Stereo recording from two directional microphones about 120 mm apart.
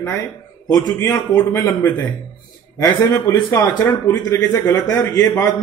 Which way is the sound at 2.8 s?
25° left (ahead or behind).